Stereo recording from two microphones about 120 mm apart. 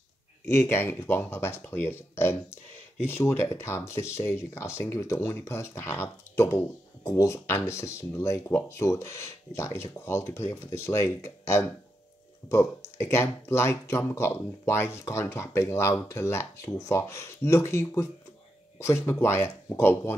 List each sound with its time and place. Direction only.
0.5 s speech: 20° left (ahead or behind)